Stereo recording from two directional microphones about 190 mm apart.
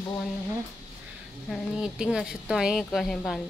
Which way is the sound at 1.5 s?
Centre (ahead or behind).